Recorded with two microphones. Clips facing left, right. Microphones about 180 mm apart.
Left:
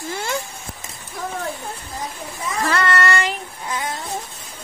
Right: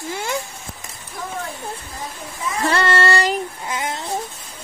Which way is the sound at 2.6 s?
30° right (ahead or behind).